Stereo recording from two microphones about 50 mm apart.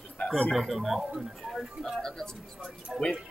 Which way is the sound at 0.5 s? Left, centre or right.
Centre.